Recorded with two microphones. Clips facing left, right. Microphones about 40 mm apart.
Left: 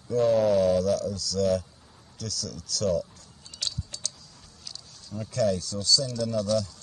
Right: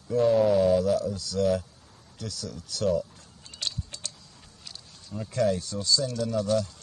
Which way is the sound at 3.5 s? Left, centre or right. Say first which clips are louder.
Even; right.